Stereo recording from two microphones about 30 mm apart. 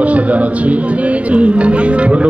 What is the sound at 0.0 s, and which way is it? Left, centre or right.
Speech, right.